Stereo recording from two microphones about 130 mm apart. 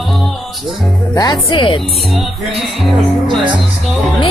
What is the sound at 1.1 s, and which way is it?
Speech, 30° left (ahead or behind).